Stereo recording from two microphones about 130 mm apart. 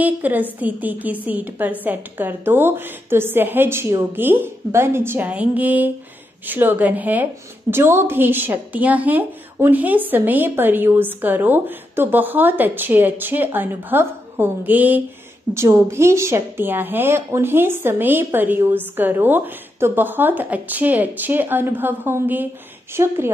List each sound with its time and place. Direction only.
0.0 s a woman's voice: 15° right (ahead or behind)